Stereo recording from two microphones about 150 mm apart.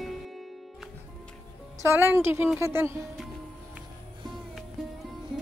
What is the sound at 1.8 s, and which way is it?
A woman's voice, 15° right (ahead or behind).